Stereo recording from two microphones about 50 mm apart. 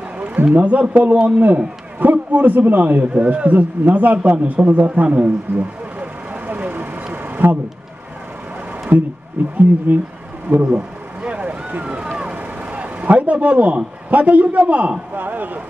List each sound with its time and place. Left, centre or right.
0.6 s a man's voice: right
7.2 s a sound: right
8.9 s speech: right
9.4 s speech: right
11.2 s a sound: right
12.4 s a man's voice: right